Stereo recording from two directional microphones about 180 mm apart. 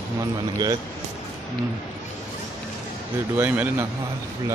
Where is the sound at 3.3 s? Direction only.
10° right (ahead or behind).